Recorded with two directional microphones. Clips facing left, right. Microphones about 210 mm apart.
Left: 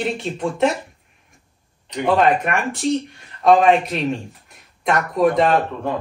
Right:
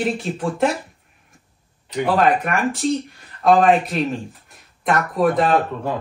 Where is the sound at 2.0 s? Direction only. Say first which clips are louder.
Left 1 dB; centre (ahead or behind).